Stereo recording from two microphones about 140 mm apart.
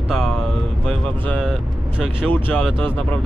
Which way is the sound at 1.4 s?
5° right (ahead or behind).